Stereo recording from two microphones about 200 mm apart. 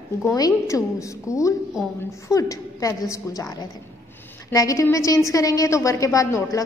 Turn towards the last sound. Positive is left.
turn(degrees=15)  # may be behind; listen again after turning